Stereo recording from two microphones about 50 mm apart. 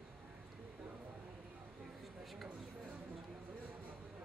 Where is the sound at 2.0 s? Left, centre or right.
Centre.